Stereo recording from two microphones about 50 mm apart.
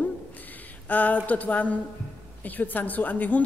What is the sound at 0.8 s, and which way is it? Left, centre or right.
A woman's voice, left.